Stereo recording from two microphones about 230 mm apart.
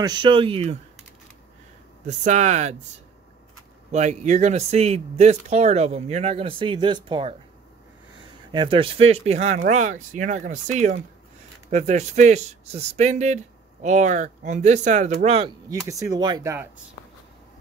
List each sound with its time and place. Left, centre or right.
0.0 s speech: centre
2.0 s speech: right
3.9 s speech: right
8.5 s speech: right
15.9 s speech: centre